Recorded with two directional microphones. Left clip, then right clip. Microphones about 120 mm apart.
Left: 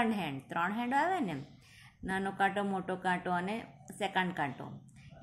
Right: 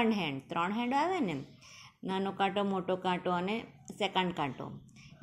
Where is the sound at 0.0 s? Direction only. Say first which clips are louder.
Right 2 dB; 20° right (ahead or behind).